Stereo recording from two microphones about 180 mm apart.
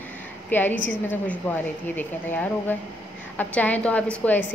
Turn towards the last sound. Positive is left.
turn(degrees=10)  # may be behind; listen again after turning